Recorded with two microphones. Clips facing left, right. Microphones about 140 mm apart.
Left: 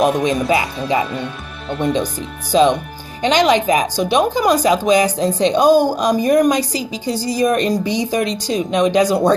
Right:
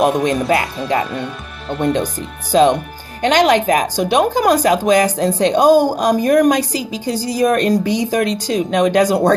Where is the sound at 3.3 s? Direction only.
55° right (ahead or behind).